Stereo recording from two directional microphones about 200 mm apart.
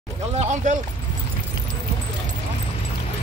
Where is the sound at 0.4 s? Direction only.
35° right (ahead or behind).